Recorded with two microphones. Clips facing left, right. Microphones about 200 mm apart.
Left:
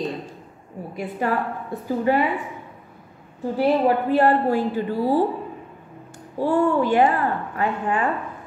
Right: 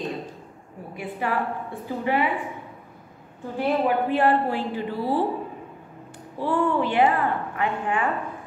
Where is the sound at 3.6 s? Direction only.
40° left (ahead or behind).